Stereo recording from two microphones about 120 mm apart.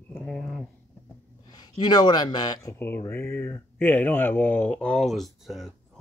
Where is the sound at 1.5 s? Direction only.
35° left (ahead or behind).